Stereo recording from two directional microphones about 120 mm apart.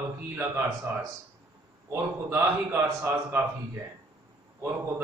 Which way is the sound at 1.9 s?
20° right (ahead or behind).